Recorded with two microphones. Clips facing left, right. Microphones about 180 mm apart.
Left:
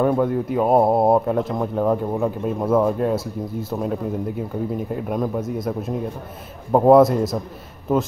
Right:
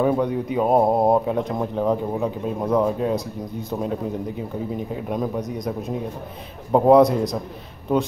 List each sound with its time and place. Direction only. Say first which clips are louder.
0.0 s speech: left 2 dB; centre (ahead or behind)